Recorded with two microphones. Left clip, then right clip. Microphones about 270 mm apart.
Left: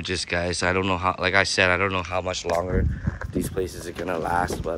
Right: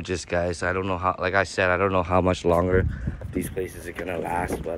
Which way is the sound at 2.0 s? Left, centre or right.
Right.